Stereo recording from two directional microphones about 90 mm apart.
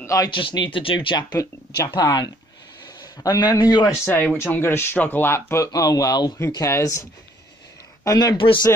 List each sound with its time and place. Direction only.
0.0 s speech: 35° left (ahead or behind)
0.3 s a man's voice: 65° left (ahead or behind); by 3.9 s 50° left (ahead or behind)
4.0 s speech: 25° left (ahead or behind)
5.7 s speech: 40° left (ahead or behind)